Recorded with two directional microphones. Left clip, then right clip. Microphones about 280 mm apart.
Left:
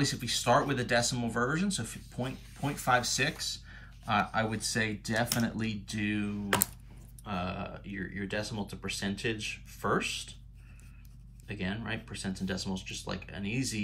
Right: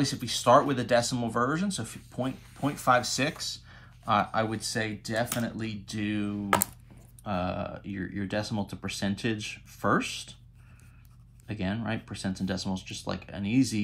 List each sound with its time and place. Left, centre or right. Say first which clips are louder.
0.0 s speech: right 4 dB; centre
7.2 s speech: right 5 dB; right
11.6 s speech: right 4 dB; right